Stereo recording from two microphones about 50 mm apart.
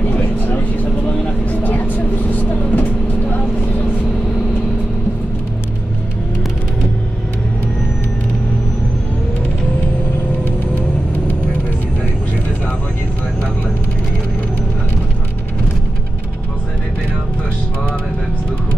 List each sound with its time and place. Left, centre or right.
0.1 s vehicle: left